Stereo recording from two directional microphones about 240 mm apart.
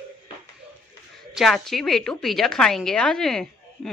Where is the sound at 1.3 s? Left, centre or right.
Centre.